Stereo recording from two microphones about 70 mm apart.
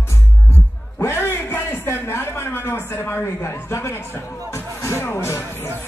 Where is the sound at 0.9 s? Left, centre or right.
Left.